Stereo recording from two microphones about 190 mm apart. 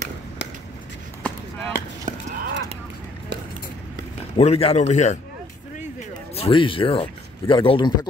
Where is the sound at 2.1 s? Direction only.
40° right (ahead or behind).